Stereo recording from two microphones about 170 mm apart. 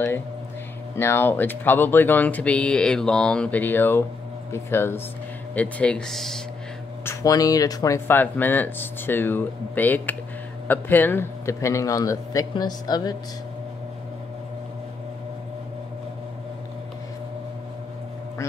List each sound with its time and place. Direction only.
0.9 s speech: 15° left (ahead or behind)
7.1 s a man's voice: 20° left (ahead or behind)